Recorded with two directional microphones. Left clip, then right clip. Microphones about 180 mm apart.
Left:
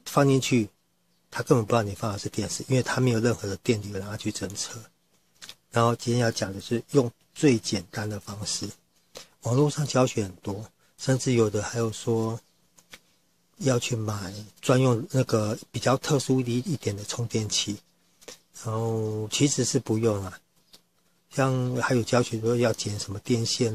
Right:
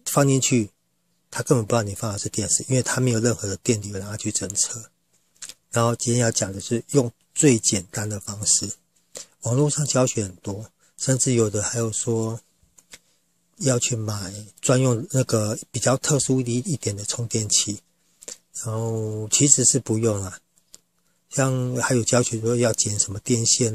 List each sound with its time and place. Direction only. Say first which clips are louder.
0.0 s speech: right 2 dB; 30° right (ahead or behind)
13.6 s speech: right 3 dB; 25° right (ahead or behind)